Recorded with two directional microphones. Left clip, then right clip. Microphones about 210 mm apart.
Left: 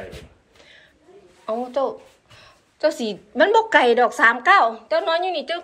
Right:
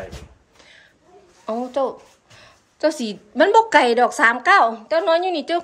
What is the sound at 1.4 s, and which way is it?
A woman's voice, 20° right (ahead or behind).